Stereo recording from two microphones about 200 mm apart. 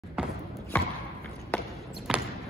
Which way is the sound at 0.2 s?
5° right (ahead or behind).